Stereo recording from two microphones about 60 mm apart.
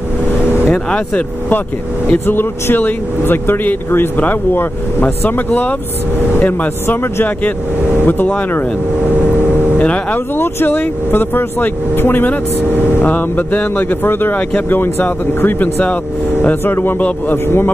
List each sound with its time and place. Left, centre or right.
0.7 s speech: centre
2.1 s speech: left
9.8 s speech: left
10.3 s speech: left
16.6 s speech: left